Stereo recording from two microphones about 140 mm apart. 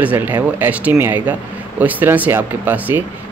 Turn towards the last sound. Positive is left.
turn(degrees=-15)  # may be behind; listen again after turning